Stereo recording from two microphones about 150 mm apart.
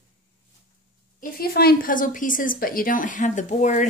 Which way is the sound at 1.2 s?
85° left.